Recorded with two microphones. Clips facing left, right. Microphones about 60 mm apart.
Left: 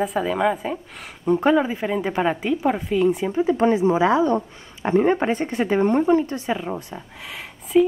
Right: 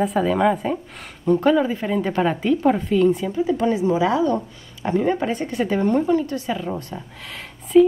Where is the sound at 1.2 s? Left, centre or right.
Centre.